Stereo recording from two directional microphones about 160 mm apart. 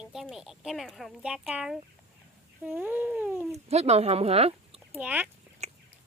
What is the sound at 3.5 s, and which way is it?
Speech, 40° right (ahead or behind).